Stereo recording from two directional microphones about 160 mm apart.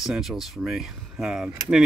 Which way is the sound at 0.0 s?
Centre (ahead or behind).